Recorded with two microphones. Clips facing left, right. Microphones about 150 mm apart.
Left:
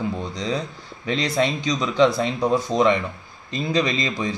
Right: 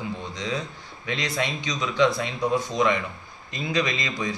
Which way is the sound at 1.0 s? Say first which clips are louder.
Left 6 dB; 30° left (ahead or behind).